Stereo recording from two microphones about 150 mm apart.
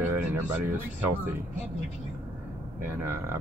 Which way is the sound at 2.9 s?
15° right (ahead or behind).